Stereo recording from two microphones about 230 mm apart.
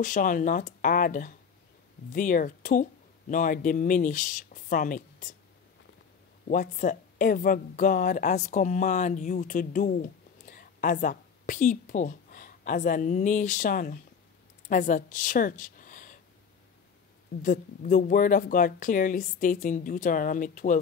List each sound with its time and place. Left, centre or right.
0.0 s speech: left
6.4 s a woman's voice: left
17.4 s speech: left